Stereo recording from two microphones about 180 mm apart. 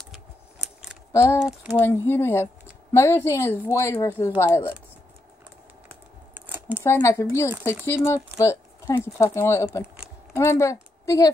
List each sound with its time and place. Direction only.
0.1 s typing: 5° right (ahead or behind)
1.1 s a sound: 15° left (ahead or behind)
1.4 s speech: 5° right (ahead or behind)
1.8 s a woman's voice: 10° left (ahead or behind)
6.3 s scissors: 10° right (ahead or behind)
6.8 s a woman's voice: 15° left (ahead or behind)